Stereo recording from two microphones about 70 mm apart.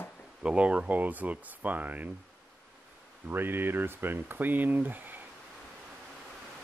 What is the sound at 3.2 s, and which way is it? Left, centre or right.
Speech, right.